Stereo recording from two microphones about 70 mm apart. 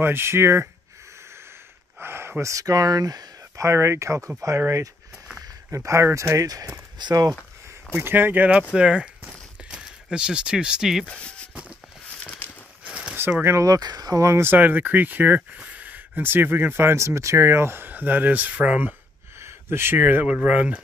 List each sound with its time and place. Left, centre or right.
0.0 s speech: right
2.0 s a sound: right
2.5 s speech: right
3.6 s speech: right
7.0 s speech: right
8.0 s speech: right; by 11.1 s centre
11.1 s speech: centre
12.2 s a sound: left
12.8 s a sound: centre
13.4 s speech: right
13.7 s speech: right
14.2 s speech: right; by 18.9 s centre
19.4 s speech: right; by 20.8 s centre